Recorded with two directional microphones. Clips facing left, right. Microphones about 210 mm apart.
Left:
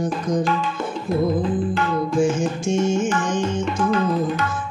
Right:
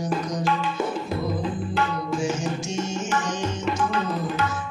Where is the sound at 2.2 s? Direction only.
55° left (ahead or behind).